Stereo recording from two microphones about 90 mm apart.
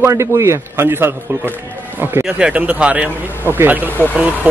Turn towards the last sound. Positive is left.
turn(degrees=-15)  # may be behind; listen again after turning